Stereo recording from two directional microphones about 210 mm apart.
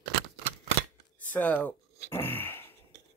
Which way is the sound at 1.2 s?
5° left (ahead or behind).